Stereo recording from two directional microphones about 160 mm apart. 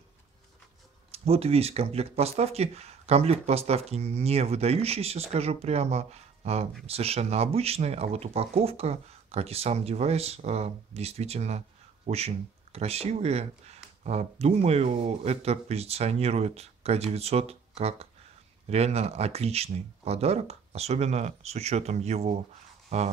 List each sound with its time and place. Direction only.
1.1 s speech: 40° right (ahead or behind)